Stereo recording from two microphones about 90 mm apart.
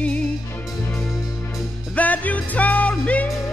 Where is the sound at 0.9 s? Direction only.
Centre (ahead or behind).